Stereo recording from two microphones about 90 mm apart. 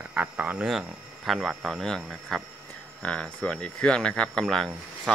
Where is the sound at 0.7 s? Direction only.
5° right (ahead or behind).